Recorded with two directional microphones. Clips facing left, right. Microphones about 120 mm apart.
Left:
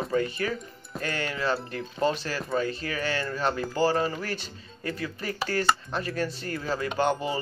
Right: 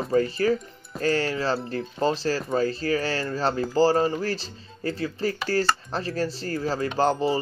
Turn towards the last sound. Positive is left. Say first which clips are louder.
# right 4 dB
turn(degrees=-35)  # may be behind; listen again after turning